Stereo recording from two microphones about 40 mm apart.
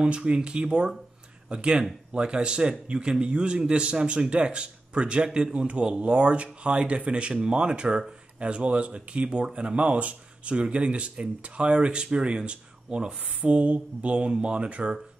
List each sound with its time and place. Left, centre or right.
0.0 s speech: right